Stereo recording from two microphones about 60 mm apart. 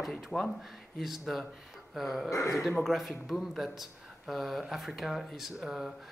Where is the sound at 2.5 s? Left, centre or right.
Centre.